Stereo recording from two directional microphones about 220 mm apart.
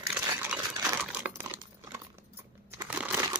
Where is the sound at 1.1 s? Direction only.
5° right (ahead or behind).